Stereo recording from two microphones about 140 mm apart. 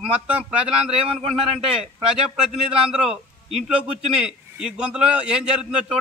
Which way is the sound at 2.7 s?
5° right (ahead or behind).